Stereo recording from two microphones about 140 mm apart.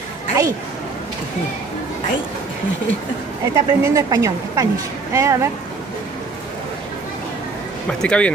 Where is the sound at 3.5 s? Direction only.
25° right (ahead or behind).